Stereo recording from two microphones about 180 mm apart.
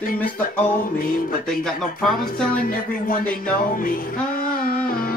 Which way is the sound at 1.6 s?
Centre (ahead or behind).